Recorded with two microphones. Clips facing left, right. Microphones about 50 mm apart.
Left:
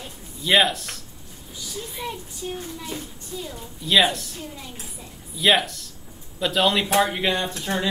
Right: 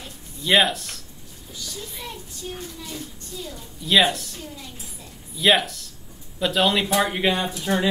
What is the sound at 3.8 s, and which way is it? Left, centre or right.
Speech, centre.